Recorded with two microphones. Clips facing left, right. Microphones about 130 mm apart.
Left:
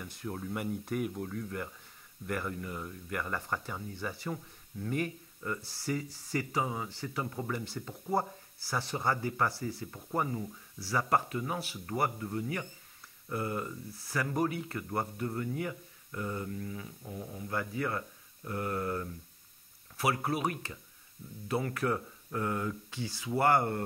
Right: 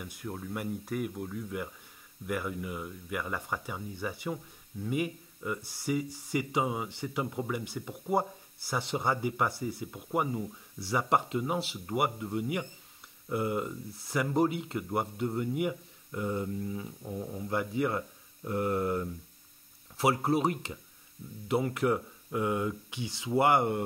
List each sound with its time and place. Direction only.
0.0 s speech: 5° right (ahead or behind)